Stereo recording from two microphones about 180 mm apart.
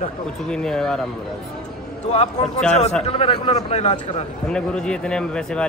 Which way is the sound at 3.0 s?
30° left (ahead or behind).